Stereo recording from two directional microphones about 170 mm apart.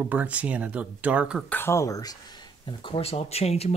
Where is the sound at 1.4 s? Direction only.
10° left (ahead or behind).